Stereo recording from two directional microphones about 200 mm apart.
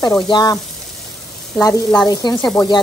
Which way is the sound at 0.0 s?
20° left (ahead or behind).